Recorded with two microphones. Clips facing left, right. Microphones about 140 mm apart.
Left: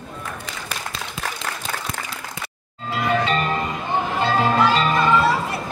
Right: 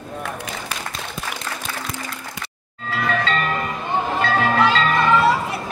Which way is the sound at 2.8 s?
20° left (ahead or behind).